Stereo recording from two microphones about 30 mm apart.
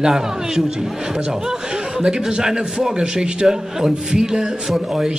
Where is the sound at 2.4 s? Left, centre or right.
Right.